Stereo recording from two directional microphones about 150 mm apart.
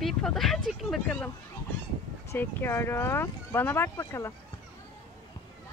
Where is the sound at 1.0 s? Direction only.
10° left (ahead or behind).